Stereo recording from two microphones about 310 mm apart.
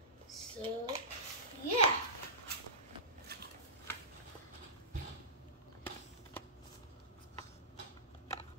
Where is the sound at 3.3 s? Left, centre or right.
Right.